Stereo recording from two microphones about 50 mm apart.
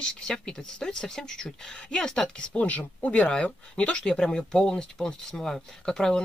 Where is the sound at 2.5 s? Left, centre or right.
Left; by 6.1 s centre.